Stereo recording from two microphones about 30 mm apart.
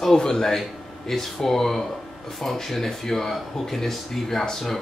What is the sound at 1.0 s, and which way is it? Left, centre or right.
Speech, centre.